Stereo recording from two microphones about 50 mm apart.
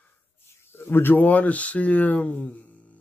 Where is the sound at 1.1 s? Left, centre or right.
Left.